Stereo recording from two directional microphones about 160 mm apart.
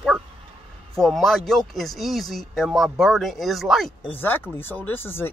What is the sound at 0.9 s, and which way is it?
Speech, centre (ahead or behind).